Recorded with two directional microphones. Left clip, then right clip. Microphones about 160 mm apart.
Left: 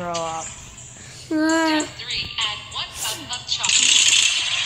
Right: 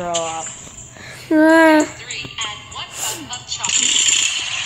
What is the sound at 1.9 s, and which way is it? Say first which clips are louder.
Music: left 2 dB; 5° left (ahead or behind).